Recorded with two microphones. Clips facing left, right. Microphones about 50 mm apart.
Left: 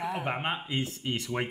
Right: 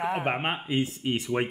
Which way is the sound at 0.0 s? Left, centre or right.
Right.